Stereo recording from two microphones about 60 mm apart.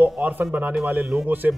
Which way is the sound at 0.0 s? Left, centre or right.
Right.